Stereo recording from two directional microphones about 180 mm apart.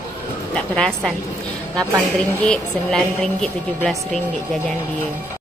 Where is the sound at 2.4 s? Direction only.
5° left (ahead or behind).